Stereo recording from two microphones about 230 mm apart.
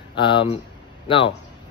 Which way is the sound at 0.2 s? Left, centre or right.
Left.